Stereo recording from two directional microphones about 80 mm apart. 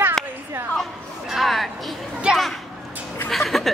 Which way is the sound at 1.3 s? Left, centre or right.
Centre.